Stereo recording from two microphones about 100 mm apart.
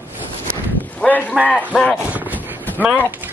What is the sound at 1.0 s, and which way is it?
Speech, 15° left (ahead or behind).